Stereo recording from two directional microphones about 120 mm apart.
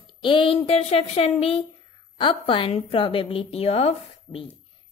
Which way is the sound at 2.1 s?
45° left (ahead or behind).